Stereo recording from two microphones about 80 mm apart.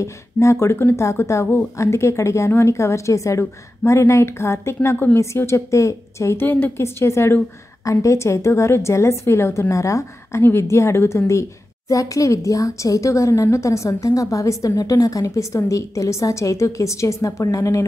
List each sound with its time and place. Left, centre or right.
0.0 s speech: left
6.4 s a woman's voice: left
6.8 s speech: left